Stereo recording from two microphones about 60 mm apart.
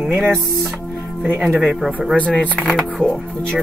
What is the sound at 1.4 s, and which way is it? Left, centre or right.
Speech, centre.